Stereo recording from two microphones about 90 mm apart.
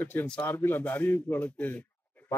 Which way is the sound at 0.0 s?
20° left (ahead or behind).